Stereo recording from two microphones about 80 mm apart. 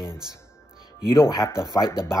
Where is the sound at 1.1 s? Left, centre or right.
Left.